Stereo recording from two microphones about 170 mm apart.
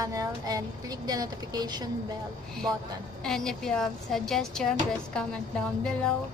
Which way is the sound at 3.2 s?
5° left (ahead or behind).